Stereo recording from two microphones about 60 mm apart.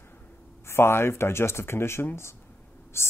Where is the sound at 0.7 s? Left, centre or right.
Left.